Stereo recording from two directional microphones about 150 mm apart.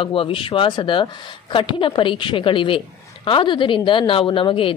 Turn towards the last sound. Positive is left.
turn(degrees=35)  # may be behind; listen again after turning